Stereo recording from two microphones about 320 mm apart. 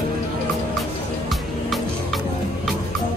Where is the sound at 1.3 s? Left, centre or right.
Centre.